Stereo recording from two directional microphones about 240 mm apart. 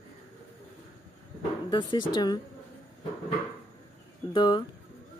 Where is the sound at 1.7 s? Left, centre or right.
Centre.